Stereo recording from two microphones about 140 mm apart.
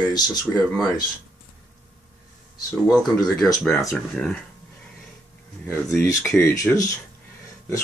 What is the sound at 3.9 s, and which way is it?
Speech, 5° left (ahead or behind).